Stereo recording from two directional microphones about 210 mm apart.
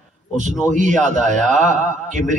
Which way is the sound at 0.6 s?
35° right (ahead or behind).